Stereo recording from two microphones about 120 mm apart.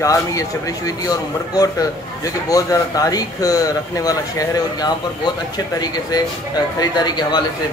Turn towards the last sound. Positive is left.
turn(degrees=35)  # may be behind; listen again after turning